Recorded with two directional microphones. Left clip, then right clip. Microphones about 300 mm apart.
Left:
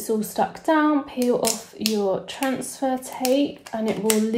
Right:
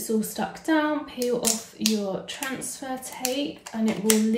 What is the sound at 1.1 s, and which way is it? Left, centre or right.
Speech, centre.